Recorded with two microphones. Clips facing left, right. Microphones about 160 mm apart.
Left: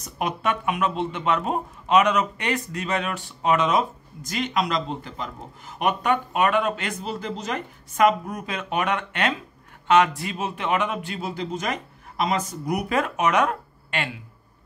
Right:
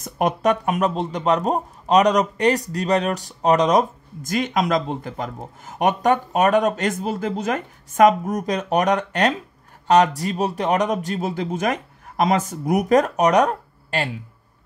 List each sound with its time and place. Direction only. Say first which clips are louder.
0.0 s a man's voice: right 6 dB; 45° right (ahead or behind)